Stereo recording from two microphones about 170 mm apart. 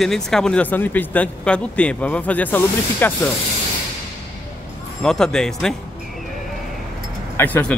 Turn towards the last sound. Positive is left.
turn(degrees=10)  # may be behind; listen again after turning